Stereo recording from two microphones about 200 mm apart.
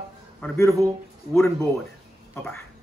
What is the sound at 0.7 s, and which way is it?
Speech, 15° right (ahead or behind).